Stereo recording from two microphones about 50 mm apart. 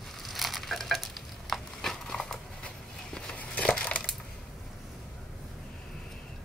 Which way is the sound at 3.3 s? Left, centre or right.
Left.